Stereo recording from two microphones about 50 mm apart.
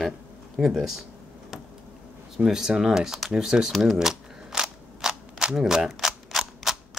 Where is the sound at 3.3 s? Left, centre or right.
Centre.